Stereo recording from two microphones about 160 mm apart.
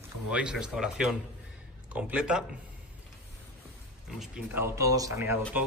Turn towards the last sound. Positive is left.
turn(degrees=-20)  # may be behind; listen again after turning